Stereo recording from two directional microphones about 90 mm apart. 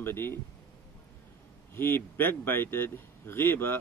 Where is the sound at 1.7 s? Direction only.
25° left (ahead or behind).